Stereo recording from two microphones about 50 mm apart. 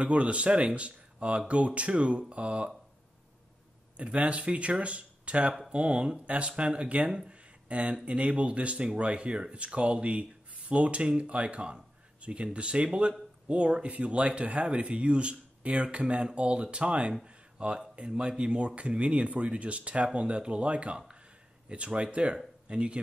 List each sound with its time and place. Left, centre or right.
0.0 s speech: right
3.9 s speech: right